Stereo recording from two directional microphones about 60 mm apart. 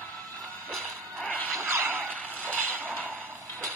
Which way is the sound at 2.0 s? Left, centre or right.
Left.